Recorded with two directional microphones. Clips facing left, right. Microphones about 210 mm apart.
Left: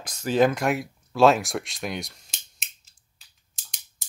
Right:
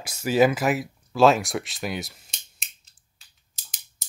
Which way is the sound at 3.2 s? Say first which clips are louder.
Right 1 dB; centre (ahead or behind).